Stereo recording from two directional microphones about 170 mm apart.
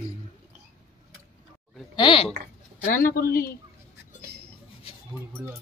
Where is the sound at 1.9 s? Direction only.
30° left (ahead or behind).